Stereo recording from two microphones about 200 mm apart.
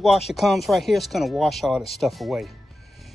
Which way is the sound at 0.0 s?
Centre (ahead or behind).